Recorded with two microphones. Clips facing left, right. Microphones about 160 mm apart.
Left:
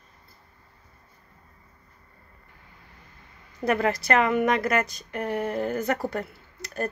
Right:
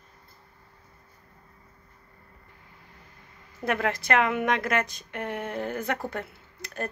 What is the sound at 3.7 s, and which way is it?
A woman's voice, centre (ahead or behind).